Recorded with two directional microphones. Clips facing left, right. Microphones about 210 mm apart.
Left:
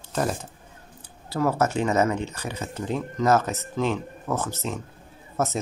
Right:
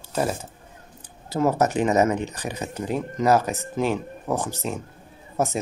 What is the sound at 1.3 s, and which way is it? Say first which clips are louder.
Speech: right 2 dB; 20° right (ahead or behind).